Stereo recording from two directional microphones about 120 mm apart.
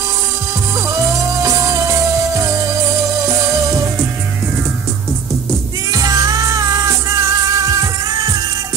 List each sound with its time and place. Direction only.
0.7 s music: 30° right (ahead or behind)
5.9 s music: 30° right (ahead or behind)